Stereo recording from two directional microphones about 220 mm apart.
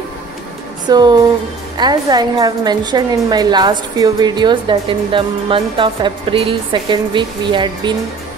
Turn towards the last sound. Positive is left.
turn(degrees=-20)  # may be behind; listen again after turning